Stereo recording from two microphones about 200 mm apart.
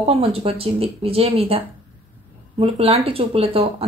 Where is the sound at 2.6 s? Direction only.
30° right (ahead or behind).